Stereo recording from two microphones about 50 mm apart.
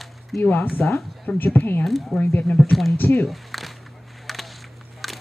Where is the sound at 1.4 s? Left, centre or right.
Left.